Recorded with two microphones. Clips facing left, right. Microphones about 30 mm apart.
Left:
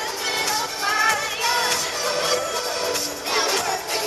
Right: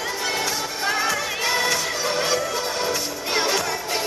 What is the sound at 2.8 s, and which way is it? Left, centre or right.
Music, left.